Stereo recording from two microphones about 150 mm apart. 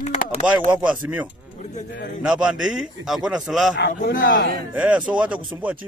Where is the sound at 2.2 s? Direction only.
5° right (ahead or behind).